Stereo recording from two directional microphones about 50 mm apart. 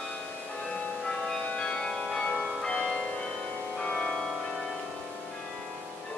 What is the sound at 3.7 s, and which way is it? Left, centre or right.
Music, centre.